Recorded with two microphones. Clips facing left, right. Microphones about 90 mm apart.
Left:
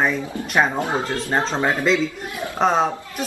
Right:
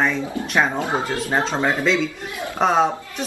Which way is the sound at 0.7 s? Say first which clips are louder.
Even; 20° right (ahead or behind).